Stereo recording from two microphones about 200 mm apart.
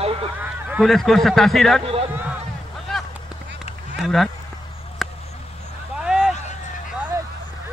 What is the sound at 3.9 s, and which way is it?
Speech, centre (ahead or behind).